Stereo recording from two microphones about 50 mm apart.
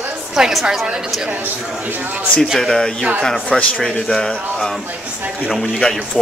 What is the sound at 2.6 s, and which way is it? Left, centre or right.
A man's voice, centre.